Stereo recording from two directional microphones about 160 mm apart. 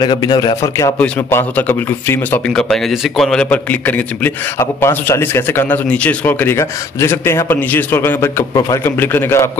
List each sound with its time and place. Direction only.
0.0 s speech: 25° left (ahead or behind)
0.9 s a man's voice: 10° left (ahead or behind)